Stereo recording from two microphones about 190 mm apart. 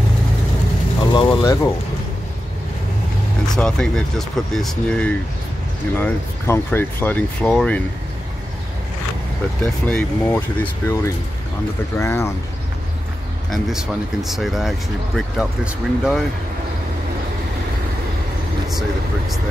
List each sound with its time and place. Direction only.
1.1 s speech: 25° left (ahead or behind)
3.5 s speech: 5° left (ahead or behind)
9.6 s speech: 5° left (ahead or behind)
13.5 s speech: centre (ahead or behind)